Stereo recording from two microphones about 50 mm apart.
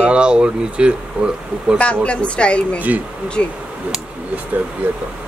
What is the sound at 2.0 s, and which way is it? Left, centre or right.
A woman's voice, left.